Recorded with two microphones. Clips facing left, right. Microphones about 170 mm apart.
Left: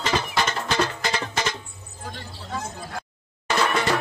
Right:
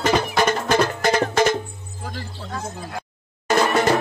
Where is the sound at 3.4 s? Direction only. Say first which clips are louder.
Right 5 dB; 45° right (ahead or behind).